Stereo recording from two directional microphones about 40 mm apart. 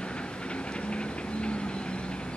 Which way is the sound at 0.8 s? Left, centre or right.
Left.